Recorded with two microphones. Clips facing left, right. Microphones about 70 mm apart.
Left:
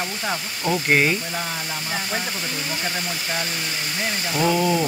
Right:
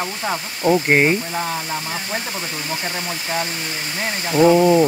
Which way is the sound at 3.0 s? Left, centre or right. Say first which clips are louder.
Right 3 dB; right.